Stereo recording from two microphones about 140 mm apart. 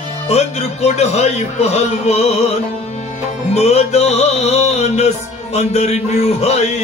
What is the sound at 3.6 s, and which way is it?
Music, 50° left (ahead or behind).